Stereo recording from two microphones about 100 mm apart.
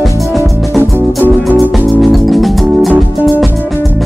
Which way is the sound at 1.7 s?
Centre (ahead or behind).